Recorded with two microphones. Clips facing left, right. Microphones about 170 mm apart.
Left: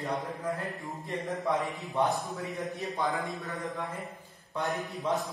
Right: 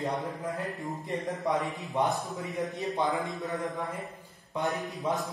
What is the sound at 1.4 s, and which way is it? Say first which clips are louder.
A man's voice: even; 20° right (ahead or behind).